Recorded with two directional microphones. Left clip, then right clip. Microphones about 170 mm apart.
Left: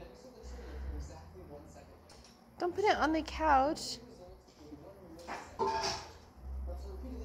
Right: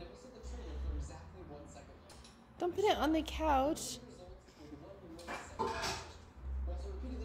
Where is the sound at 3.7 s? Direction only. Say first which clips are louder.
Left 2 dB; 90° right.